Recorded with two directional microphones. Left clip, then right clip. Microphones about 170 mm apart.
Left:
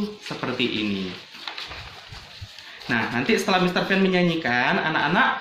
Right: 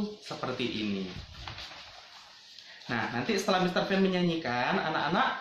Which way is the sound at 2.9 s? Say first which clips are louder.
Left 8 dB; 5° right (ahead or behind).